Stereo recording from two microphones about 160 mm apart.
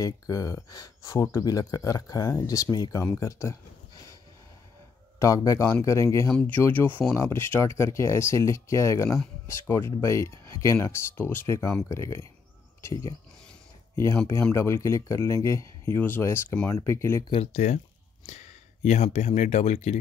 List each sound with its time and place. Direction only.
0.0 s speech: 20° left (ahead or behind)
5.2 s speech: 20° left (ahead or behind)
14.5 s speech: 15° left (ahead or behind)
17.3 s speech: 45° left (ahead or behind)